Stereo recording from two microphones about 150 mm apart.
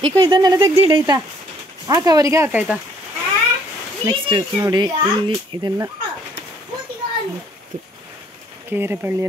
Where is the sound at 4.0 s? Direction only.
30° right (ahead or behind).